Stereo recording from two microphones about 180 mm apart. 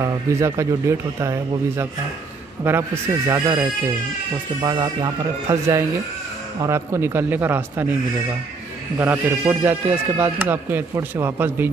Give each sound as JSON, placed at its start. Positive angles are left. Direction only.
{"t": 0.0, "sound": "speech", "side_deg": -15}
{"t": 2.6, "sound": "speech", "side_deg": -15}
{"t": 8.9, "sound": "speech", "side_deg": -15}